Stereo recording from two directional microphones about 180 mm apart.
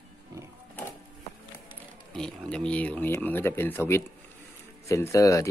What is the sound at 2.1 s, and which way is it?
A man's voice, 5° left (ahead or behind).